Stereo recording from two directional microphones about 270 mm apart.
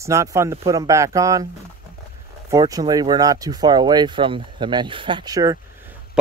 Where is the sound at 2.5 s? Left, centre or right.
Centre.